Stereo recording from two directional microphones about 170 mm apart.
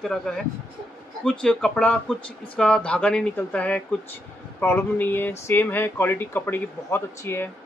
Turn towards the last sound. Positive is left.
turn(degrees=15)  # may be behind; listen again after turning